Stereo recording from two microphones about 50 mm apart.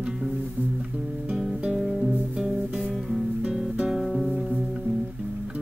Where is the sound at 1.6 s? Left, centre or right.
Right.